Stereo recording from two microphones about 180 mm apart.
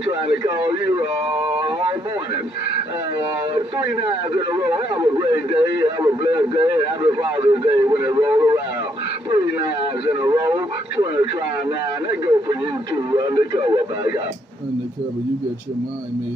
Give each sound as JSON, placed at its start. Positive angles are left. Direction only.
{"t": 3.7, "sound": "speech", "side_deg": -25}
{"t": 7.9, "sound": "speech", "side_deg": -15}
{"t": 10.2, "sound": "speech", "side_deg": -20}